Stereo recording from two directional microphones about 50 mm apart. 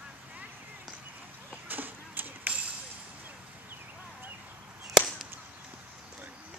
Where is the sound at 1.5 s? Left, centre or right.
Right.